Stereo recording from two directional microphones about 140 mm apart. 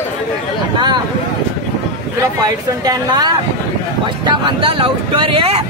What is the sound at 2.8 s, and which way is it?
A man's voice, 30° right (ahead or behind).